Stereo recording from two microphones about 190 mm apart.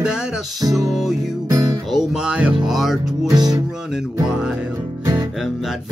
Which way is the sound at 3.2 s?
20° right (ahead or behind).